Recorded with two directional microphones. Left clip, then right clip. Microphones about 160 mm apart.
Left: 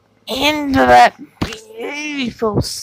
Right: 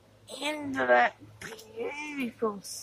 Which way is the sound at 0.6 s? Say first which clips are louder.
Left 14 dB; 35° left (ahead or behind).